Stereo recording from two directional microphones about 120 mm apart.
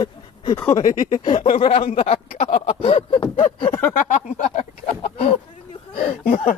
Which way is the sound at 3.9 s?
90° left.